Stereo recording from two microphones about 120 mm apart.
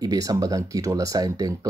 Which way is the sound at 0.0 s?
30° right (ahead or behind).